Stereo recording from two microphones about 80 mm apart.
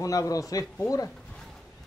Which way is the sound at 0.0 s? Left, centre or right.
Left.